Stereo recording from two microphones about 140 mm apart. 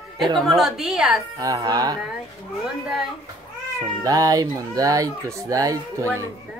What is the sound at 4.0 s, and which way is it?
Speech, 25° right (ahead or behind).